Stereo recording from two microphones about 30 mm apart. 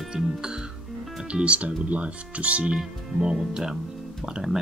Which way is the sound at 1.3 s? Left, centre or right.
Right.